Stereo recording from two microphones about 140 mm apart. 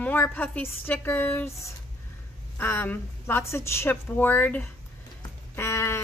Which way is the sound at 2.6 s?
15° left (ahead or behind).